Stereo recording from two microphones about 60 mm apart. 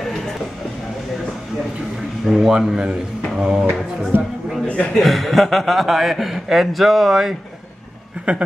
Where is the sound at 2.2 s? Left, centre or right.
Centre.